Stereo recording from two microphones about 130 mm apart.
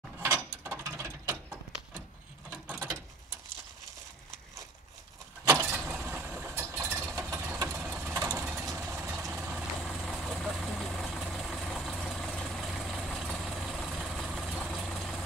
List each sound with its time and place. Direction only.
0.2 s mechanisms: 20° right (ahead or behind)
5.6 s vehicle: 15° right (ahead or behind)
7.2 s engine: 20° right (ahead or behind)
8.0 s vehicle: 15° right (ahead or behind)
9.8 s vehicle: 5° left (ahead or behind)